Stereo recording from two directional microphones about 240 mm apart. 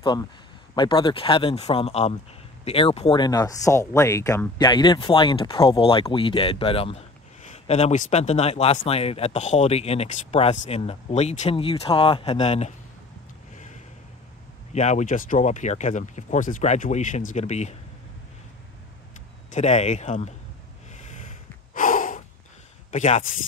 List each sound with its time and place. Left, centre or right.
0.7 s speech: centre
14.7 s speech: left
19.5 s speech: left
20.9 s snort: left
22.8 s speech: left